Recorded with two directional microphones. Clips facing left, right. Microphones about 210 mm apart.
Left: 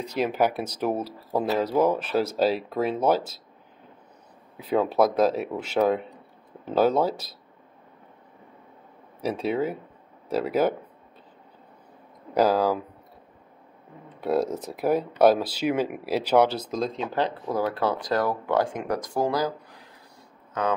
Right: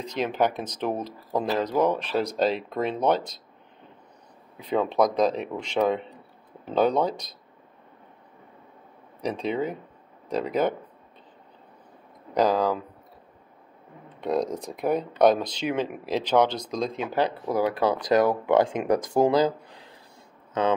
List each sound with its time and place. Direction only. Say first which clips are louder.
0.0 s speech: left 1 dB; 10° left (ahead or behind)
4.6 s a man's voice: left 1 dB; 5° left (ahead or behind)
9.2 s a man's voice: left 1 dB; 5° left (ahead or behind)
12.4 s speech: left 1 dB; 5° left (ahead or behind)
14.2 s speech: left 1 dB; 5° left (ahead or behind)
17.1 s speech: right 1 dB; 10° right (ahead or behind)